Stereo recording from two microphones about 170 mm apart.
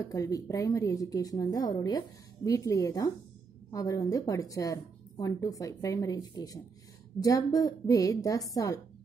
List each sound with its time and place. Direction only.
0.0 s speech: 20° left (ahead or behind)